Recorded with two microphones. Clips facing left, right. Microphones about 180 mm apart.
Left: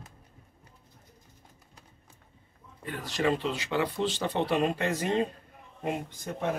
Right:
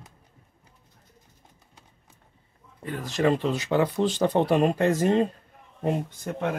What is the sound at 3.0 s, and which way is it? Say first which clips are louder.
Speech: right 5 dB; 45° right (ahead or behind).